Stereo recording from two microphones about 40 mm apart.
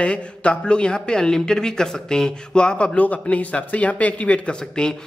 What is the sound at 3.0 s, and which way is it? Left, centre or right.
A man's voice, left.